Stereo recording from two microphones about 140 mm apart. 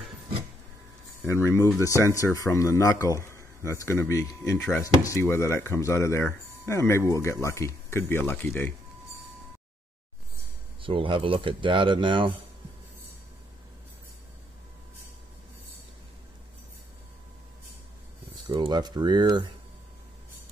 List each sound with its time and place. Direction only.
1.2 s speech: 20° left (ahead or behind)
10.8 s speech: 40° right (ahead or behind)
18.3 s speech: 30° right (ahead or behind)